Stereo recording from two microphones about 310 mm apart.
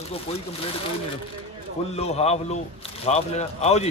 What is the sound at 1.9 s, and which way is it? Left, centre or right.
Speech, centre.